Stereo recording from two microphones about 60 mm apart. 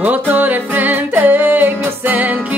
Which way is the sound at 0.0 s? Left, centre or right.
Right.